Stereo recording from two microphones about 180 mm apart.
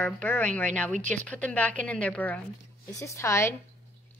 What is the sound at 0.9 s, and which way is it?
Speech, 45° right (ahead or behind).